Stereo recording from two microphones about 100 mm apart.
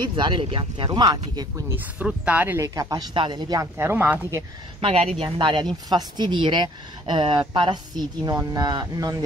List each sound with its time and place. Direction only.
0.0 s speech: 55° right (ahead or behind)
1.0 s speech: 45° right (ahead or behind)
1.8 s speech: 15° right (ahead or behind)
2.7 s speech: 35° right (ahead or behind)
3.2 s speech: 50° right (ahead or behind)
3.5 s speech: 25° right (ahead or behind)
4.7 s speech: 80° right; by 9.1 s 45° right (ahead or behind)